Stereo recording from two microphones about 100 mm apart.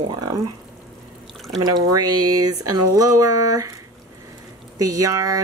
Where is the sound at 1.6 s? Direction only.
40° right (ahead or behind).